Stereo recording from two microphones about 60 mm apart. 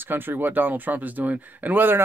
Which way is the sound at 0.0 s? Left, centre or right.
Right.